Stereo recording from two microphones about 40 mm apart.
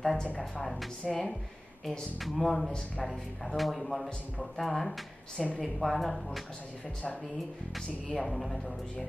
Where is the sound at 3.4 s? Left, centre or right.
Centre.